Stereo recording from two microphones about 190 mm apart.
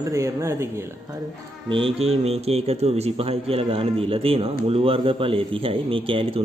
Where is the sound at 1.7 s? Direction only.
30° right (ahead or behind).